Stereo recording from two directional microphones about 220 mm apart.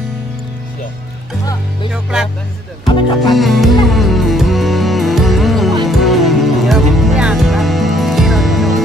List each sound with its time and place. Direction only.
1.9 s music: 5° right (ahead or behind)
3.3 s speech: centre (ahead or behind)
3.8 s music: centre (ahead or behind)